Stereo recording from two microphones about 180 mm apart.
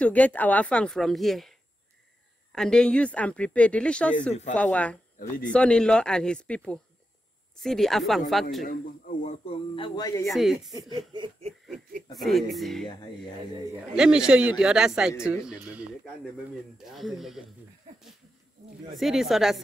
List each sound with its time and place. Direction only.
0.0 s speech: 10° left (ahead or behind)
2.5 s speech: 5° left (ahead or behind)
4.3 s speech: 40° left (ahead or behind)
4.6 s speech: 5° left (ahead or behind)
8.6 s speech: 50° left (ahead or behind)
9.8 s speech: 20° left (ahead or behind)
10.3 s speech: centre (ahead or behind)
10.7 s snicker: 20° right (ahead or behind)
12.1 s speech: centre (ahead or behind)
13.9 s speech: 5° right (ahead or behind)
18.9 s speech: centre (ahead or behind)